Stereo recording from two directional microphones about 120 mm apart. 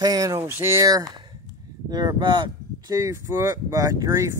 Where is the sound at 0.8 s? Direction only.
35° right (ahead or behind).